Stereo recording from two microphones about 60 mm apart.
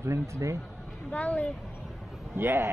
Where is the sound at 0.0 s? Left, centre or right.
Right.